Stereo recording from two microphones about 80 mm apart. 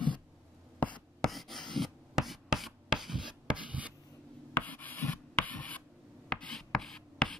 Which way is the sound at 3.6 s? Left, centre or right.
Centre.